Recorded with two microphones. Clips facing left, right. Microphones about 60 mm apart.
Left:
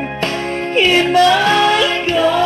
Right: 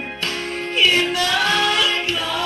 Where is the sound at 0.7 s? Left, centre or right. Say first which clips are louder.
Left 7 dB; left.